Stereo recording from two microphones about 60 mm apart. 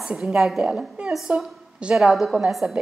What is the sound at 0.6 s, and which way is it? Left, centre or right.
A woman's voice, centre.